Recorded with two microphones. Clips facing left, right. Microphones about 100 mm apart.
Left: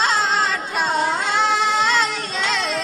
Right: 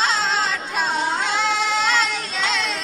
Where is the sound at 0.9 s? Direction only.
50° left (ahead or behind).